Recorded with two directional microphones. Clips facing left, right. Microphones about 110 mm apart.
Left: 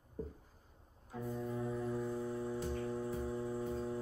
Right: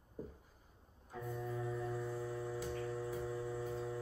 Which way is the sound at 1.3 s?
20° left (ahead or behind).